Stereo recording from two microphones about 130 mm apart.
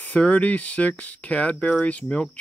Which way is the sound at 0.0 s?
10° left (ahead or behind).